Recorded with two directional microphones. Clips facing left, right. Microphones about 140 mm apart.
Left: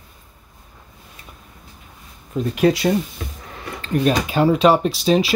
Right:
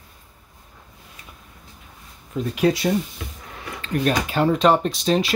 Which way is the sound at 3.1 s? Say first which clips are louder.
Left 3 dB; 40° left (ahead or behind).